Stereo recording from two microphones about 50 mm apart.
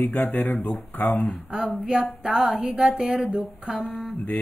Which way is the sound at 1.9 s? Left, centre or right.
Centre.